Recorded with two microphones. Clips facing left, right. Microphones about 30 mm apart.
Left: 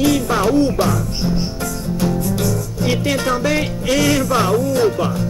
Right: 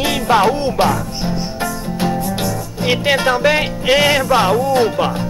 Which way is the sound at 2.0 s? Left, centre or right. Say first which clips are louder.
Right 1 dB; right.